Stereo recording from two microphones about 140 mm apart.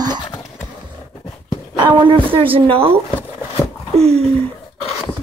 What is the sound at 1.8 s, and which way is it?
Speech, 35° right (ahead or behind).